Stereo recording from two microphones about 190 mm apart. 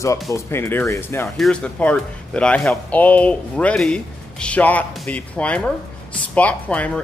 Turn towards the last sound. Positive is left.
turn(degrees=5)  # may be behind; listen again after turning